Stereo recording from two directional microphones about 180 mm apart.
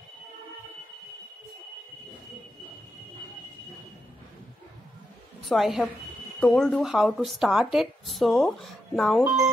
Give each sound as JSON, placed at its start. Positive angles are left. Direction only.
{"t": 5.5, "sound": "a woman's voice", "side_deg": 0}